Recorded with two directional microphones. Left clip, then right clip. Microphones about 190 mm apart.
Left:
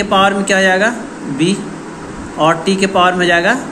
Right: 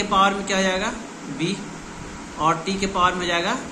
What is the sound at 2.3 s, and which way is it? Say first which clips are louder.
Speech: left 9 dB; 15° left (ahead or behind).